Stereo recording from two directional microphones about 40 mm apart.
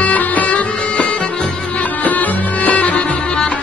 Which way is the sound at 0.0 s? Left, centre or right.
Left.